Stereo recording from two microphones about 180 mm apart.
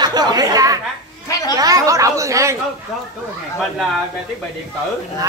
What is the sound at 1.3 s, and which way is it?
Speech, 20° left (ahead or behind).